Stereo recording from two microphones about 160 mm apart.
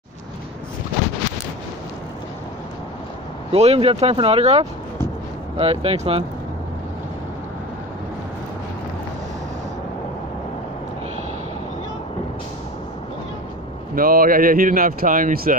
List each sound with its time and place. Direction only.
3.5 s speech: 40° right (ahead or behind)
13.9 s speech: 65° right (ahead or behind)